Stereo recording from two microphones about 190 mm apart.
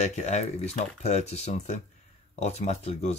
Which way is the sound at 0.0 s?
35° left (ahead or behind).